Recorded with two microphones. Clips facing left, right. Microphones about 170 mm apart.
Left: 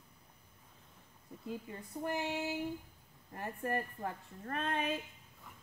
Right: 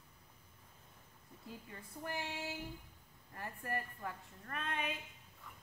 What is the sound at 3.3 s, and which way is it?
A woman's voice, 25° left (ahead or behind).